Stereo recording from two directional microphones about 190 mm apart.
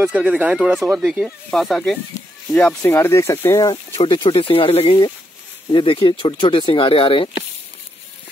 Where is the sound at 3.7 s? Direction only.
25° left (ahead or behind).